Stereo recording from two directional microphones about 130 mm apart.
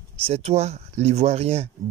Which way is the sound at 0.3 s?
50° right (ahead or behind).